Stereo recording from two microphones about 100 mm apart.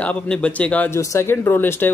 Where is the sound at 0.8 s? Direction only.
25° left (ahead or behind).